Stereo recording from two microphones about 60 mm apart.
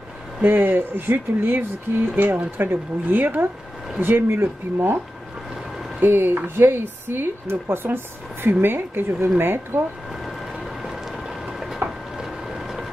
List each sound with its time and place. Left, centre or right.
0.4 s speech: right
5.9 s speech: right
10.8 s a sound: centre
12.2 s boat: centre